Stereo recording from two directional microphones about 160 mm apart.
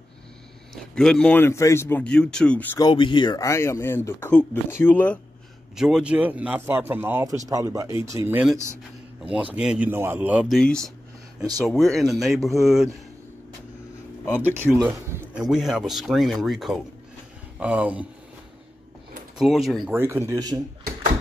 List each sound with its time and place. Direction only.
0.7 s speech: 5° left (ahead or behind)
2.8 s speech: 30° left (ahead or behind); by 5.2 s 10° left (ahead or behind)
5.8 s a man's voice: 5° right (ahead or behind); by 8.4 s 20° right (ahead or behind)
9.2 s a man's voice: 10° right (ahead or behind)
14.2 s speech: 10° left (ahead or behind)
14.8 s a man's voice: 10° right (ahead or behind)
19.3 s speech: centre (ahead or behind)
19.9 s a man's voice: 15° right (ahead or behind)